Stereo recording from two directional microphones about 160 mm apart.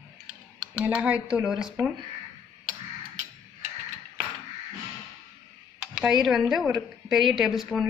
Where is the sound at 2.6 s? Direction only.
50° right (ahead or behind).